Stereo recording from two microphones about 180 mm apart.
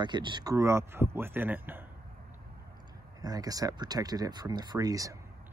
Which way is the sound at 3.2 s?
20° right (ahead or behind).